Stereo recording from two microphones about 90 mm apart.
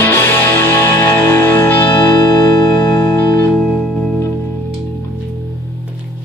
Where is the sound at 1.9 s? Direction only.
50° left (ahead or behind).